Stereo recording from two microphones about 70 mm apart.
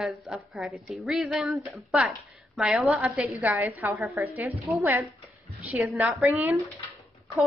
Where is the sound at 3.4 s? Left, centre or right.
Right.